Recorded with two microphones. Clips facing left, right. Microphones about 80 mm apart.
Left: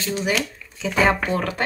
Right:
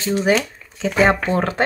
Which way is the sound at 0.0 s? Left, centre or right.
Right.